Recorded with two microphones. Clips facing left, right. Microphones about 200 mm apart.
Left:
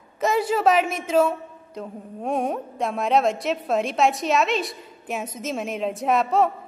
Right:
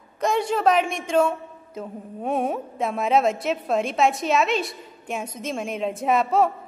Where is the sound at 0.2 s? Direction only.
5° left (ahead or behind).